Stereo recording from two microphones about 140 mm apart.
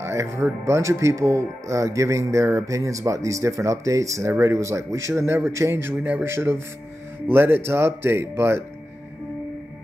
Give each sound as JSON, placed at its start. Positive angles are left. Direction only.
{"t": 0.0, "sound": "speech", "side_deg": -20}